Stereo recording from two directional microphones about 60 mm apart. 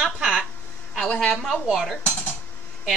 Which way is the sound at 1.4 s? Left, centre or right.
Centre.